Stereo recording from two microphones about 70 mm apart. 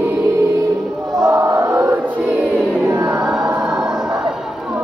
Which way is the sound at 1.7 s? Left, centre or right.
Right.